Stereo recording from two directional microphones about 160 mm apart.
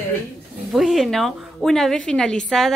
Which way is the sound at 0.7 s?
Centre (ahead or behind).